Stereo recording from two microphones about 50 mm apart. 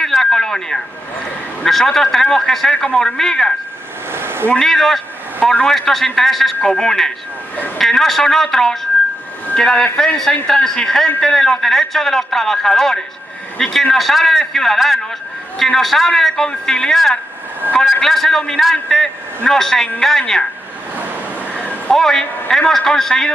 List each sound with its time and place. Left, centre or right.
0.0 s a sound: centre
1.6 s speech: centre
2.7 s speech: left
3.0 s speech: centre
4.1 s a sound: right
4.6 s speech: centre
17.6 s speech: right
18.0 s speech: centre
21.9 s speech: centre